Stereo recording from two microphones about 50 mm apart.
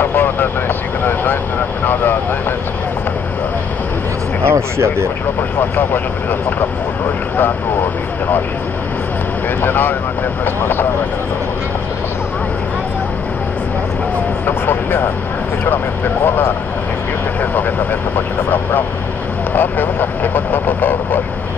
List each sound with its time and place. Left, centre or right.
0.0 s vehicle: left
4.5 s speech: right
9.6 s speech: left
14.4 s speech: left
17.4 s speech: left